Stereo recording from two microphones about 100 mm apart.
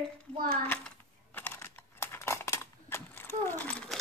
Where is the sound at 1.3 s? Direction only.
25° left (ahead or behind).